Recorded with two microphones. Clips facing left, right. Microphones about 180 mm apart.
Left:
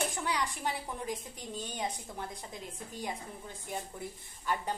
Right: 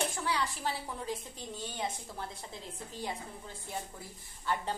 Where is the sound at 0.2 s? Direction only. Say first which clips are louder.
Even; 15° left (ahead or behind).